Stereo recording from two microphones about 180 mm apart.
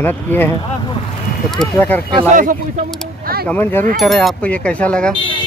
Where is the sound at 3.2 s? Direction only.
55° right (ahead or behind).